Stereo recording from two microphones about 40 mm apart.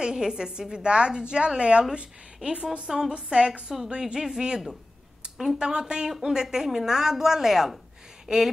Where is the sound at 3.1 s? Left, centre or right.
Right.